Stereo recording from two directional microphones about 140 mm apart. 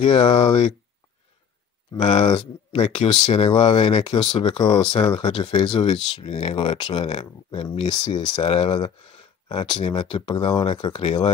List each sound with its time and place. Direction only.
0.0 s speech: 35° left (ahead or behind)
0.5 s speech: 50° left (ahead or behind)
2.0 s speech: 40° left (ahead or behind)